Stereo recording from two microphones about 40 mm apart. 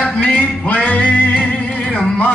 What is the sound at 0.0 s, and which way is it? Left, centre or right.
Music, left.